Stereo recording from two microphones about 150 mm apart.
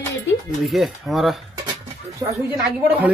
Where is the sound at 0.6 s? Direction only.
Centre (ahead or behind).